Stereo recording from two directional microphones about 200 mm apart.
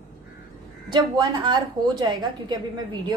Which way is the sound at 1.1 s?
20° right (ahead or behind).